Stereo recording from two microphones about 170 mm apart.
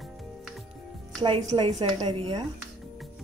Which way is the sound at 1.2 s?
30° right (ahead or behind).